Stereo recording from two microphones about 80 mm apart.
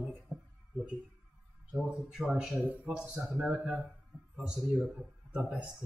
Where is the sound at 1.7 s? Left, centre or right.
Centre.